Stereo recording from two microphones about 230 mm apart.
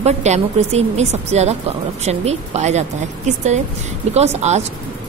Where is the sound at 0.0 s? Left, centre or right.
Right.